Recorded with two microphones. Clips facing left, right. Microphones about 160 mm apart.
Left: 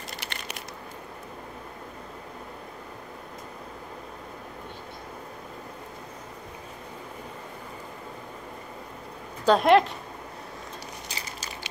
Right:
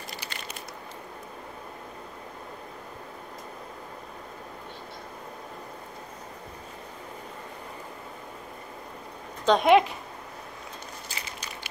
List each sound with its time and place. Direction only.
0.3 s crushing: 70° left (ahead or behind)
9.5 s speech: centre (ahead or behind)